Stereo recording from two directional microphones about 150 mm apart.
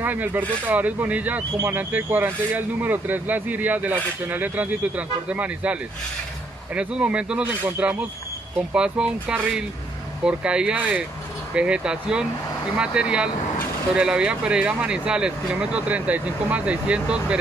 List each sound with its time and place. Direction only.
0.0 s speech: 10° right (ahead or behind)